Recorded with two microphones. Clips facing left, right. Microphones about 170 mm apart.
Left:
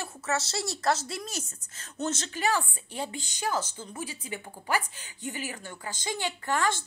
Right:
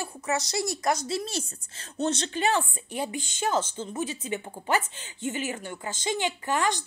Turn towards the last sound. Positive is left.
turn(degrees=-15)  # may be behind; listen again after turning